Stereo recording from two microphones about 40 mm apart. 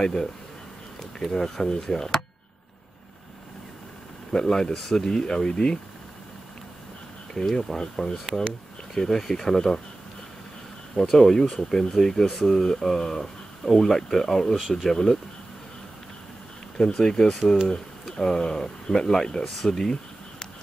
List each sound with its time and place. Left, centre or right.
0.0 s speech: centre
4.3 s speech: centre
7.3 s speech: centre
11.0 s speech: centre
16.7 s speech: centre
19.6 s a sound: centre